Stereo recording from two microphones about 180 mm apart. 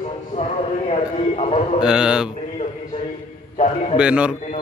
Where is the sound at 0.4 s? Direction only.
35° left (ahead or behind).